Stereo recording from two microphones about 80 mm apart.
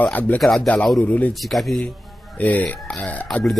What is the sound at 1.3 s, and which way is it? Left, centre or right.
Speech, centre.